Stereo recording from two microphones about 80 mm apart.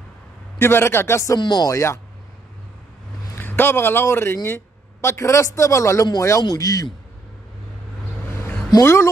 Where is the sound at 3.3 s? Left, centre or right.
Left.